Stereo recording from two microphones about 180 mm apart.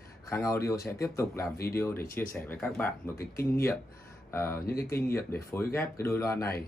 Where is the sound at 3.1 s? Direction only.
55° left (ahead or behind).